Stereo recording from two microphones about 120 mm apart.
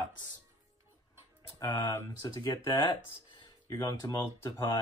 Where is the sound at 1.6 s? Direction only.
20° left (ahead or behind).